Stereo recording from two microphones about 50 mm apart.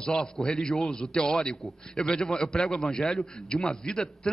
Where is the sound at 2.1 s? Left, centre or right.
Centre.